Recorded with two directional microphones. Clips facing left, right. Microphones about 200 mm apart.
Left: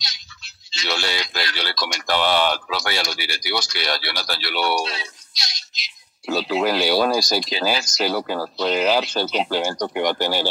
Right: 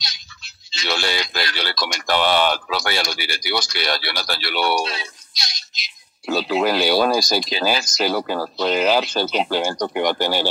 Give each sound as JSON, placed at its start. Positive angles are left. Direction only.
{"t": 0.7, "sound": "speech", "side_deg": -55}